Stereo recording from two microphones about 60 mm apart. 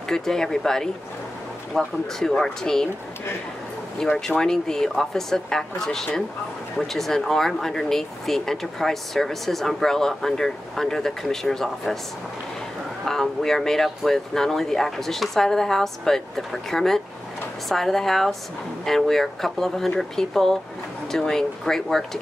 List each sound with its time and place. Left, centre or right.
0.1 s speech: centre
4.0 s speech: centre
13.0 s speech: centre